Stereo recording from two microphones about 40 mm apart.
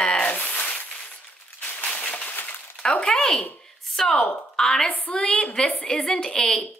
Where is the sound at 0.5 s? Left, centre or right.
Left.